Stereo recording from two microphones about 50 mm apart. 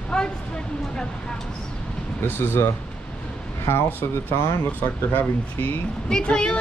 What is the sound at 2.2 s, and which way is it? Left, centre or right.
Speech, left.